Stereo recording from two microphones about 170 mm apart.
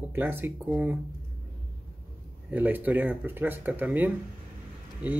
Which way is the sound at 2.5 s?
10° right (ahead or behind).